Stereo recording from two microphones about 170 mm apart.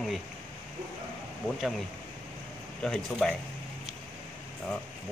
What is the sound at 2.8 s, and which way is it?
Speech, centre (ahead or behind).